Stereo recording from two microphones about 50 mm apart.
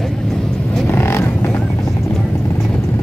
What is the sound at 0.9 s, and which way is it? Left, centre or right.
Vehicle, left.